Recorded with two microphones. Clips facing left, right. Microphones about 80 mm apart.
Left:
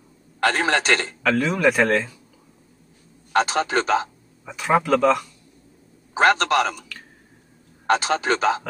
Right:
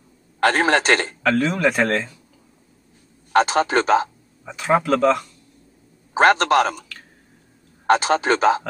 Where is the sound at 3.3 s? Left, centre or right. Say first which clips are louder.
Right 3 dB; right.